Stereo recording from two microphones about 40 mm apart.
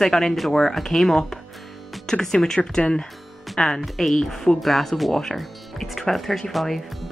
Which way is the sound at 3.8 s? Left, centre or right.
Centre.